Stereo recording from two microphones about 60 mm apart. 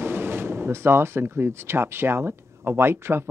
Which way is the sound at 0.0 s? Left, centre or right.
Right.